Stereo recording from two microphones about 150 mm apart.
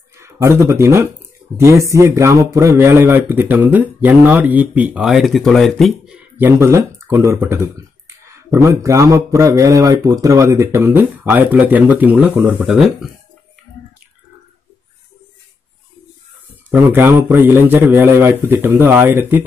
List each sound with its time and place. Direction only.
0.1 s speech: 20° right (ahead or behind)
16.7 s speech: 15° right (ahead or behind)